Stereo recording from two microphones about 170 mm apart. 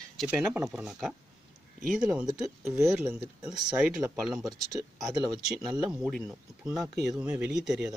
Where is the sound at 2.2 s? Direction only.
20° right (ahead or behind).